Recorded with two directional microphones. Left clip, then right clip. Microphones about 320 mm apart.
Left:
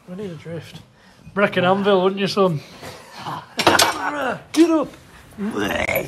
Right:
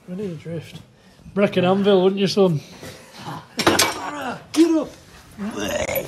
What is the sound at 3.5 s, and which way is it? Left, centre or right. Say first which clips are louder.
Speech: left 3 dB; centre.